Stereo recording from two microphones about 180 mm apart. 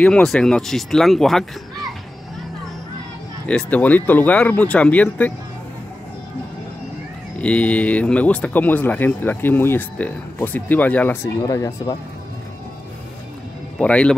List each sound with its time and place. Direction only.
0.0 s speech: 5° left (ahead or behind)
3.4 s speech: 5° left (ahead or behind)
7.3 s speech: 5° left (ahead or behind)
11.4 s speech: 20° left (ahead or behind)
13.7 s speech: 5° left (ahead or behind)